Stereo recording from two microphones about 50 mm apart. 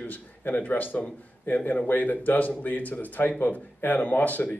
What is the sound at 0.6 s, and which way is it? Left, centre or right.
A man's voice, left.